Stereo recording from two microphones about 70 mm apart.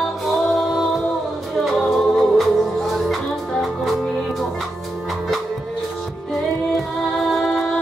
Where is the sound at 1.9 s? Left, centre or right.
Centre.